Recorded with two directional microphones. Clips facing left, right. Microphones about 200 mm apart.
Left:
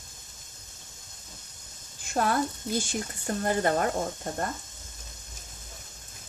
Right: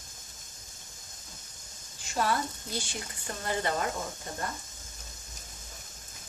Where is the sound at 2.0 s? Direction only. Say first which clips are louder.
Left 3 dB; 50° left (ahead or behind).